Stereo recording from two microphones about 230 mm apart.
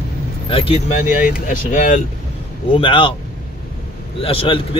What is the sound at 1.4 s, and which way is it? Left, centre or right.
Speech, left.